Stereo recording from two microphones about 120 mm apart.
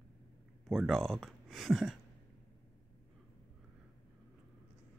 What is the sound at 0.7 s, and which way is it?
Speech, centre (ahead or behind).